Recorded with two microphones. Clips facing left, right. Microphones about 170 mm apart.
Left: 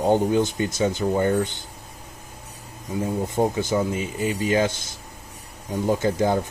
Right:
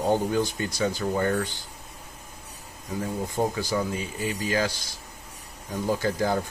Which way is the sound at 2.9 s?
20° left (ahead or behind).